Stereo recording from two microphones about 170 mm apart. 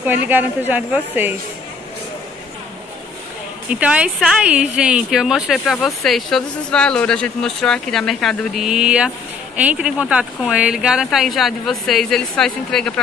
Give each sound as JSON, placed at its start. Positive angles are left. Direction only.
{"t": 0.0, "sound": "a woman's voice", "side_deg": -10}
{"t": 3.7, "sound": "speech", "side_deg": -5}